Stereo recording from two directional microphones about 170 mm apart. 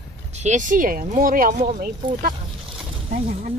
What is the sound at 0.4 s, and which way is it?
Speech, 45° right (ahead or behind).